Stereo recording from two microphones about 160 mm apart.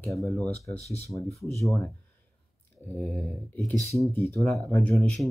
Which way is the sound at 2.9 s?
15° left (ahead or behind).